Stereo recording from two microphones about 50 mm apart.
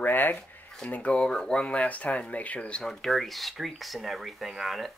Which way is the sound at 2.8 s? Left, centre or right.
Centre.